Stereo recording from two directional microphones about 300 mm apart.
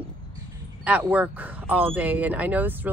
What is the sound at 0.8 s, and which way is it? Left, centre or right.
A man's voice, centre.